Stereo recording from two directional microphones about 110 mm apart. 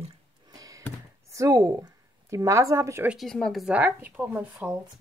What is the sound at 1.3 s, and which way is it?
A woman's voice, 30° right (ahead or behind).